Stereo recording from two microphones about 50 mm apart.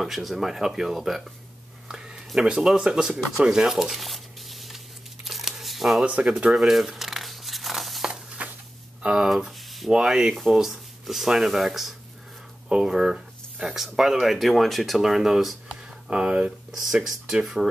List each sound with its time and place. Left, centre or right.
0.0 s speech: centre
1.9 s a sound: centre
2.4 s speech: centre
3.7 s crumpling: centre
8.4 s a sound: right
9.0 s speech: centre
9.3 s speech: centre
16.1 s speech: right
16.7 s speech: centre